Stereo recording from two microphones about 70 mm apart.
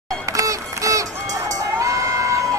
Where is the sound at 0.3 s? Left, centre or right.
Right.